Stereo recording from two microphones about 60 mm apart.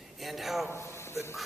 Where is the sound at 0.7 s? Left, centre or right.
Left.